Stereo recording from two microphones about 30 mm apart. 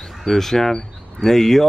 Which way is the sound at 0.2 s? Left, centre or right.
Centre.